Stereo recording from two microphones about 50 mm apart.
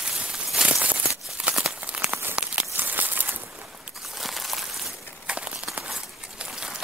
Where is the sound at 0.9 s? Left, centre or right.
Centre.